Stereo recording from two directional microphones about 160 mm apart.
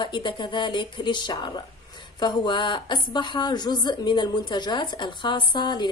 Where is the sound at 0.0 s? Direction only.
30° left (ahead or behind).